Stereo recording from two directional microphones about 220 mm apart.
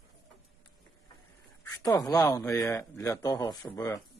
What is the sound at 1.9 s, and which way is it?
Speech, 15° left (ahead or behind).